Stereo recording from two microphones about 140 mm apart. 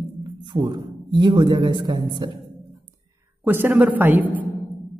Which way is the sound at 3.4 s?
15° right (ahead or behind).